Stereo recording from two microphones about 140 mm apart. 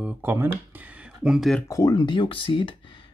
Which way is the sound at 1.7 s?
25° left (ahead or behind).